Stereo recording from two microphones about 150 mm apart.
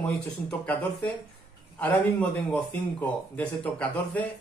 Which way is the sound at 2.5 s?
10° left (ahead or behind).